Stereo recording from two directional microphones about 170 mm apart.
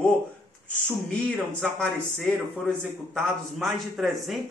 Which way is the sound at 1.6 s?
5° left (ahead or behind).